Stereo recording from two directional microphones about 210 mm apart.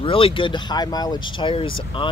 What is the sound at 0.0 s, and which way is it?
Speech, 25° left (ahead or behind).